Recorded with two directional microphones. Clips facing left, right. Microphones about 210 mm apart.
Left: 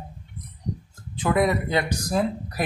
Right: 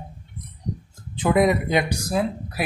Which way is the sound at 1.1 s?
20° right (ahead or behind).